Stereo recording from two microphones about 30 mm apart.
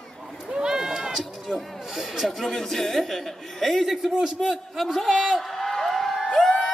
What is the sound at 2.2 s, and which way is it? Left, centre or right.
Speech, centre.